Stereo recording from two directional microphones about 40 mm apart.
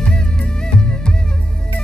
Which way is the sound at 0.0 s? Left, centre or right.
Left.